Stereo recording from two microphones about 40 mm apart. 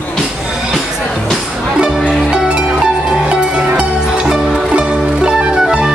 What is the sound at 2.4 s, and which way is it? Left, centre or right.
Music, right.